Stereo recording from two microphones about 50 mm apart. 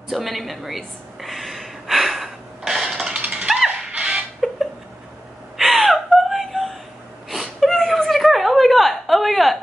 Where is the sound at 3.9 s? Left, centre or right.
Centre.